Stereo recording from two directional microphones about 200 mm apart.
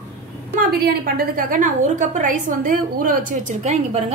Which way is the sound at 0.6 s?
50° right (ahead or behind).